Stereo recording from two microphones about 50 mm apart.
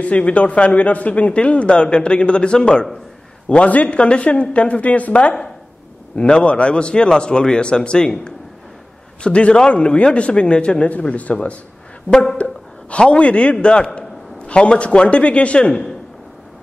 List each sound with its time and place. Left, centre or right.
0.0 s a man's voice: left
12.4 s a woman's voice: left